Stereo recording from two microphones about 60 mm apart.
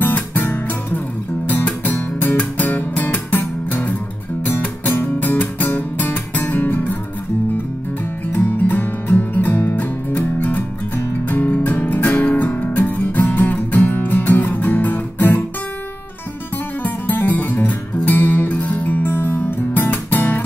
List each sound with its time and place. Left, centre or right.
0.0 s music: left
8.3 s music: left
16.8 s music: left